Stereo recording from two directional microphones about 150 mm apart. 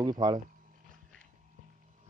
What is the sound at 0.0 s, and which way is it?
Speech, 25° right (ahead or behind).